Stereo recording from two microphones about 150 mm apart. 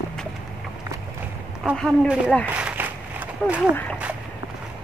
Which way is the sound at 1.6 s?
Centre (ahead or behind).